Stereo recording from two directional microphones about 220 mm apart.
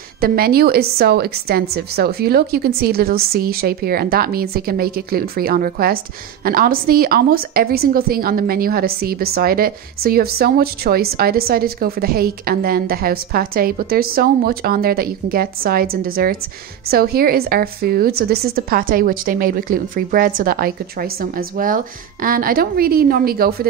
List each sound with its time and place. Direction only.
0.2 s a woman's voice: 45° right (ahead or behind)